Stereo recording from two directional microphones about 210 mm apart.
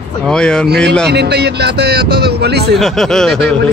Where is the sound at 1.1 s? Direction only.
50° right (ahead or behind).